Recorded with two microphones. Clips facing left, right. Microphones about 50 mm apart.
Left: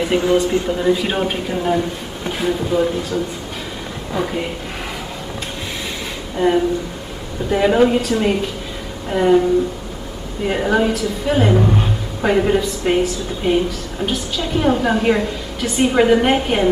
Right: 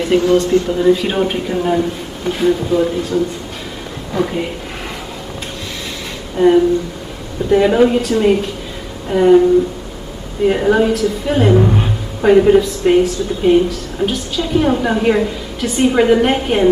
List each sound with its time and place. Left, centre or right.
0.2 s speech: centre
0.7 s a woman's voice: centre
6.3 s a sound: centre
7.4 s a woman's voice: centre